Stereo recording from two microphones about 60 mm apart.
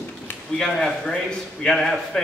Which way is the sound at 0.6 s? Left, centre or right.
Centre.